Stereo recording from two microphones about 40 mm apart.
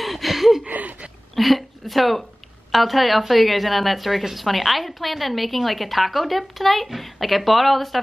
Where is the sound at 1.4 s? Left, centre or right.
Centre.